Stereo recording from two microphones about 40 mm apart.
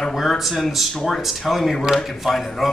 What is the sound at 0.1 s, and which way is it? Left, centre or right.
Speech, centre.